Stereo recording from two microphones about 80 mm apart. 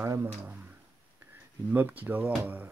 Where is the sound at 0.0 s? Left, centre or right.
Right.